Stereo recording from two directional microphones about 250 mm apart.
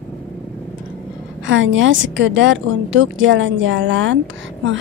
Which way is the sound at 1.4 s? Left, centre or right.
Right.